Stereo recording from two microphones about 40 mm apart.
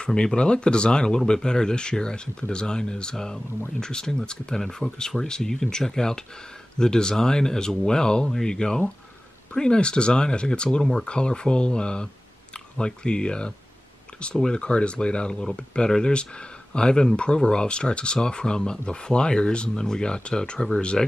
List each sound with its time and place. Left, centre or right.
0.0 s speech: left